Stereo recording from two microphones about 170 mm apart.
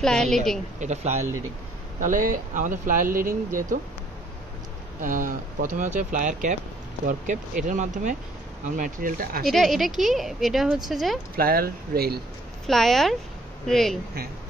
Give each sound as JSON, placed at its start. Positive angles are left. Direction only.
{"t": 0.0, "sound": "speech", "side_deg": 5}
{"t": 0.7, "sound": "speech", "side_deg": -40}
{"t": 5.0, "sound": "speech", "side_deg": -55}
{"t": 9.5, "sound": "speech", "side_deg": 0}
{"t": 11.3, "sound": "speech", "side_deg": -60}
{"t": 12.6, "sound": "speech", "side_deg": 0}